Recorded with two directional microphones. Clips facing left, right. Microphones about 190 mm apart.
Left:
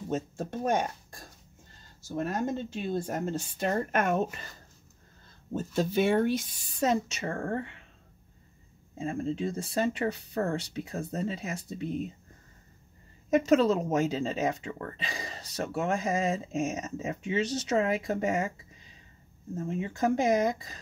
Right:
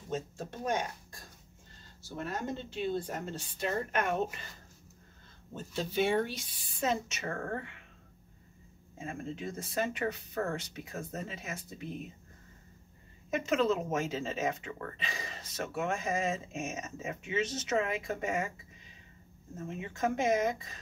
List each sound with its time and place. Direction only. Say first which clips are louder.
0.1 s speech: left 4 dB; 55° left (ahead or behind)
5.5 s speech: left 8 dB; 45° left (ahead or behind)
8.9 s speech: left 8 dB; 30° left (ahead or behind)
13.3 s speech: left 6 dB; 35° left (ahead or behind)